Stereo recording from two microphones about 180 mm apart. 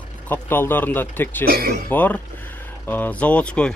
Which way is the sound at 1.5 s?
55° right (ahead or behind).